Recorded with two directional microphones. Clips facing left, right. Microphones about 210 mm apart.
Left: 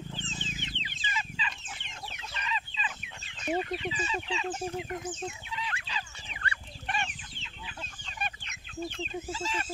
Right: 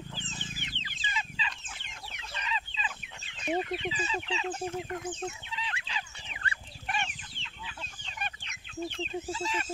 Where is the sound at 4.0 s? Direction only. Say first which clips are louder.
Even; 25° right (ahead or behind).